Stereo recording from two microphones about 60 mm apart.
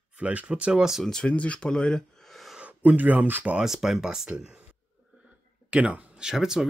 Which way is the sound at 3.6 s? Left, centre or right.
Centre.